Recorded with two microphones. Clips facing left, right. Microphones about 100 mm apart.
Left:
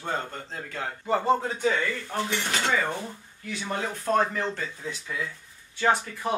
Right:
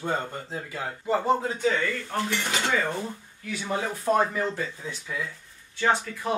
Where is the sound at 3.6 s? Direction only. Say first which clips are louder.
Right 2 dB; 10° right (ahead or behind).